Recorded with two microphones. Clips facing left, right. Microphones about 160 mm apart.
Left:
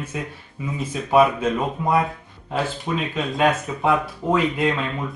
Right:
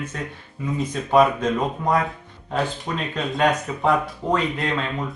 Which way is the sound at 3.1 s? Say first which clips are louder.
Even; 5° left (ahead or behind).